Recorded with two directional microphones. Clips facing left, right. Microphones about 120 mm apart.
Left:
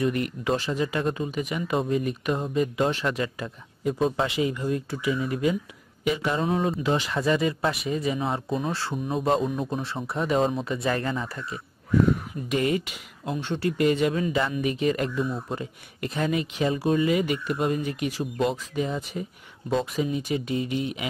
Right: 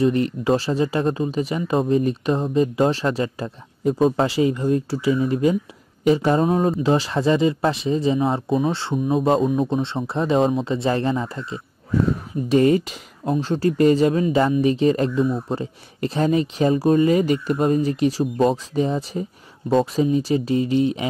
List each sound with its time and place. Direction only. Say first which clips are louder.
0.0 s speech: right 6 dB; 30° right (ahead or behind)
9.4 s speech: right 7 dB; 40° right (ahead or behind)
9.8 s speech: right 6 dB; 25° right (ahead or behind)